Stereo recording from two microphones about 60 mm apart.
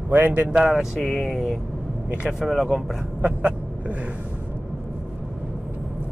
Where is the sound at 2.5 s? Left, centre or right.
Centre.